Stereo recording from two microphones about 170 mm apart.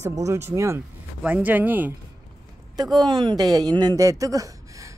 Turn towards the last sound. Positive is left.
turn(degrees=-20)  # may be behind; listen again after turning